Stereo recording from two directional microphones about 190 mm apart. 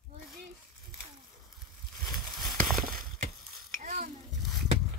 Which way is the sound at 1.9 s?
Centre (ahead or behind).